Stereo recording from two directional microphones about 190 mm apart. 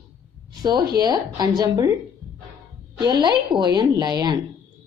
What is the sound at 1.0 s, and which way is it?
Speech, 20° right (ahead or behind).